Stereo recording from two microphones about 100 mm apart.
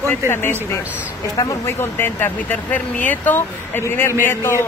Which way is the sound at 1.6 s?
20° left (ahead or behind).